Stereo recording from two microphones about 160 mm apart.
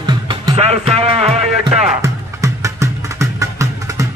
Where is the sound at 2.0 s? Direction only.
20° right (ahead or behind).